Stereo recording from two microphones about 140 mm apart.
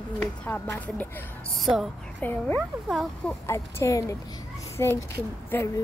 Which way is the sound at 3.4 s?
20° left (ahead or behind).